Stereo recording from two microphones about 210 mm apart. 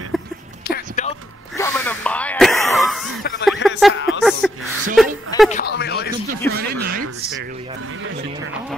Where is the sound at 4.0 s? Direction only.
65° left (ahead or behind).